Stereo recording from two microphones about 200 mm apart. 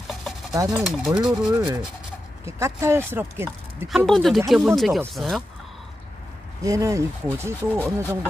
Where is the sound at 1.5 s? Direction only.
20° right (ahead or behind).